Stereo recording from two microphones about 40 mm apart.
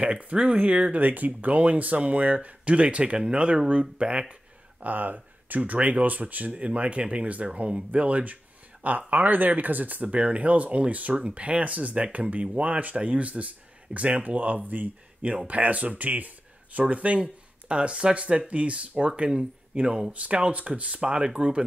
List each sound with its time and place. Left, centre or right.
0.0 s speech: right
0.9 s speech: right
4.3 s speech: right
10.1 s speech: right